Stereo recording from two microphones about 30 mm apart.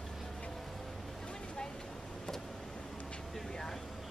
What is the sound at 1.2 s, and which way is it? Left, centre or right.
Vehicle, left.